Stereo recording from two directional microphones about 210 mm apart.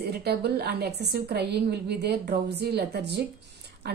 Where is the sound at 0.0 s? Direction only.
50° right (ahead or behind).